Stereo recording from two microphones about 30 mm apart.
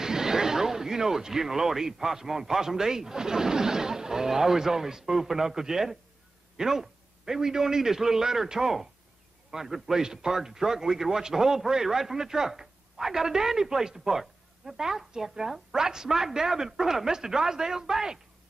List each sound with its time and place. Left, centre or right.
0.0 s a man's voice: centre